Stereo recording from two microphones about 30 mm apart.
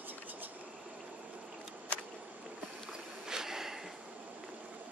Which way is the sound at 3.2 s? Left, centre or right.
Centre.